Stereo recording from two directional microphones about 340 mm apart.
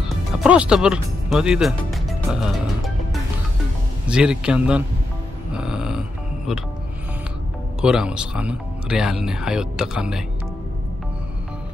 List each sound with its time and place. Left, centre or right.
0.1 s music: centre
4.1 s speech: centre
5.5 s music: centre
7.8 s speech: centre